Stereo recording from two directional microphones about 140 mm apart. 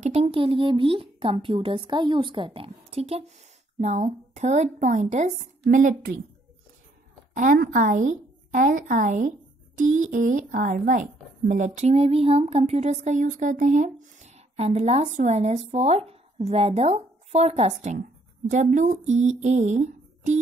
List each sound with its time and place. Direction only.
0.0 s a woman's voice: 50° right (ahead or behind); by 6.2 s 70° right (ahead or behind)
7.3 s a woman's voice: 75° right (ahead or behind); by 17.9 s 50° right (ahead or behind)
18.5 s speech: 60° right (ahead or behind)